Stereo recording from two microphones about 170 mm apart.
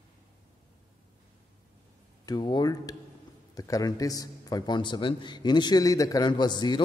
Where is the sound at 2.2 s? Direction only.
25° left (ahead or behind).